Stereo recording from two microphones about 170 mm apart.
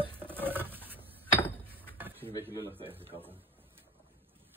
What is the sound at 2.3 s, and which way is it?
Speech, 20° left (ahead or behind).